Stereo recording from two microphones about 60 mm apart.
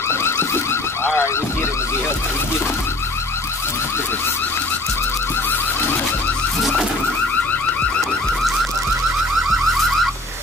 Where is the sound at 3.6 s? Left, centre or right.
Left.